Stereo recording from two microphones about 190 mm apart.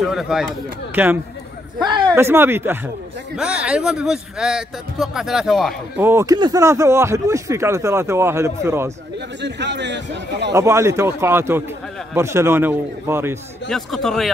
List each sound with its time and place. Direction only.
0.0 s speech: centre (ahead or behind)
1.8 s a sound: 25° right (ahead or behind)
2.1 s speech: 10° right (ahead or behind)
5.9 s speech: 15° right (ahead or behind)
9.4 s a man's voice: 65° right (ahead or behind)
10.5 s speech: 15° right (ahead or behind)
13.7 s speech: centre (ahead or behind)